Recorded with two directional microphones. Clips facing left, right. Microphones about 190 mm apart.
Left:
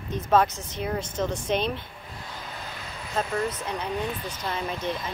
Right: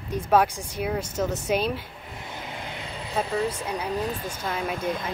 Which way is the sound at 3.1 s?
Centre (ahead or behind).